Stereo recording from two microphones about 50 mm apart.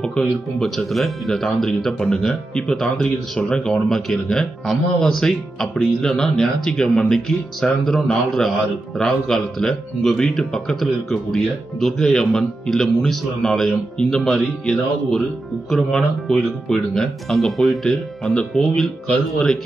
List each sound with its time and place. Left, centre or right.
0.0 s speech: centre
18.2 s speech: centre
18.5 s speech: centre